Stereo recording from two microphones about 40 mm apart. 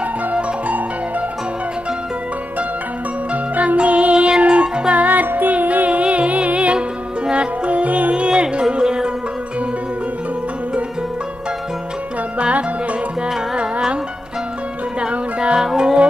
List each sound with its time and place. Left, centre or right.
0.3 s music: right
3.5 s music: right
5.0 s music: right; by 9.1 s centre
12.4 s music: right
15.0 s music: right